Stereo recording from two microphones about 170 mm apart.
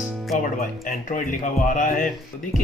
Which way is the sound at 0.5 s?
50° left (ahead or behind).